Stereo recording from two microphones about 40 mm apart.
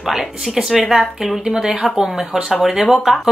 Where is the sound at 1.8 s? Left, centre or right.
Centre.